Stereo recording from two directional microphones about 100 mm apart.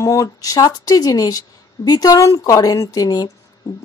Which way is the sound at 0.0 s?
30° left (ahead or behind).